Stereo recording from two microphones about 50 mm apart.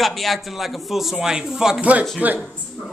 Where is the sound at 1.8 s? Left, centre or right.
Right.